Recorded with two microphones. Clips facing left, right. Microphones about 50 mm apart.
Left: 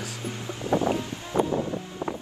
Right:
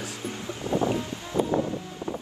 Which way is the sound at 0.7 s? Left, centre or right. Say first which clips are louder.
Left 1 dB; left.